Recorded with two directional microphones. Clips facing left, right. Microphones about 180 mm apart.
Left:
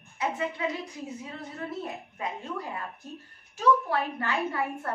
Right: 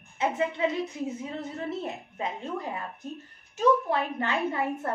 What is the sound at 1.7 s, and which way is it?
A woman's voice, 25° right (ahead or behind).